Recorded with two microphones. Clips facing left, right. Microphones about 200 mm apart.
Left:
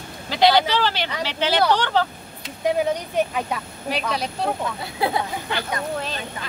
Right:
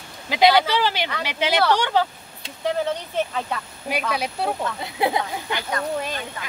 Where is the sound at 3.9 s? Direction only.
10° right (ahead or behind).